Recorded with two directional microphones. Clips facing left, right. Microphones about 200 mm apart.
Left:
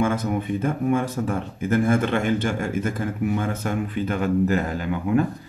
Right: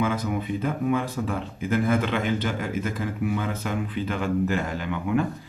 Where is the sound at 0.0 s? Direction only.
50° left (ahead or behind).